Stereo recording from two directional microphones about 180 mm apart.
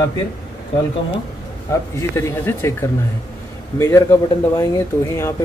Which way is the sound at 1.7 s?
15° left (ahead or behind).